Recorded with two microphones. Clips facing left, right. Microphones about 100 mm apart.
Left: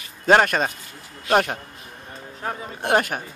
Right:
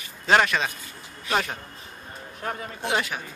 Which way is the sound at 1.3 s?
60° left (ahead or behind).